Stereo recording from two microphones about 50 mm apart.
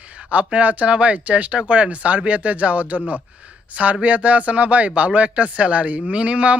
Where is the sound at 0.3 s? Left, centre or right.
Right.